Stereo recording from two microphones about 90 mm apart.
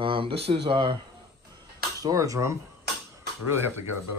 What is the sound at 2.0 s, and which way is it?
Speech, 40° right (ahead or behind).